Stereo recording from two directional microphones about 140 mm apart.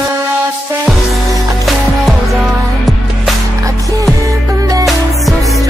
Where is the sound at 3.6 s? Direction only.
25° right (ahead or behind).